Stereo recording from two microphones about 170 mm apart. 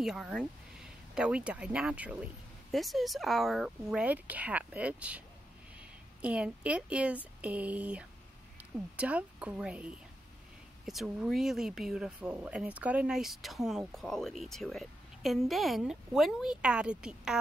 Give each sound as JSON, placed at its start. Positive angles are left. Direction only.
{"t": 0.0, "sound": "speech", "side_deg": 0}